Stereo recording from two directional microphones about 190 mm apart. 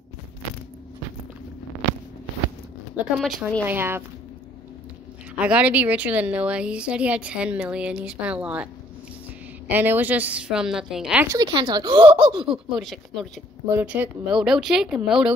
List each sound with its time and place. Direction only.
3.2 s a woman's voice: centre (ahead or behind)
5.4 s a woman's voice: 5° right (ahead or behind)
9.7 s a woman's voice: 10° right (ahead or behind)
11.2 s speech: 20° right (ahead or behind)
12.4 s speech: centre (ahead or behind)
13.7 s speech: 10° right (ahead or behind)